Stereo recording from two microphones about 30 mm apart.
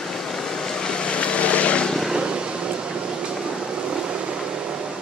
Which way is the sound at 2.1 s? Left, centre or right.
Right.